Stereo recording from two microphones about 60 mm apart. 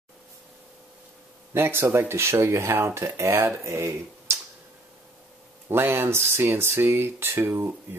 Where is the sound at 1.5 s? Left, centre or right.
Right.